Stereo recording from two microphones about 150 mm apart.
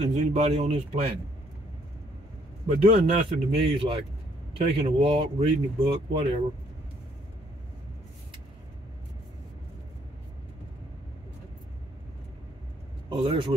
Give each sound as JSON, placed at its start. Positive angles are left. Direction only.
{"t": 0.0, "sound": "a man's voice", "side_deg": -45}
{"t": 2.8, "sound": "speech", "side_deg": -40}
{"t": 13.1, "sound": "speech", "side_deg": -30}